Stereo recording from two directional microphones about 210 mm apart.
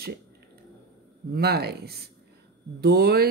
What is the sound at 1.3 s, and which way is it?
Speech, 50° right (ahead or behind).